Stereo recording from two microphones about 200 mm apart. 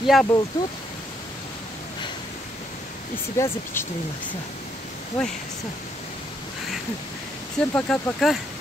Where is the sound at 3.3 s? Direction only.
15° left (ahead or behind).